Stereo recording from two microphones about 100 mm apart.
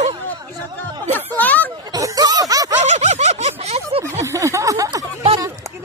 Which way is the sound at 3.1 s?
90° right.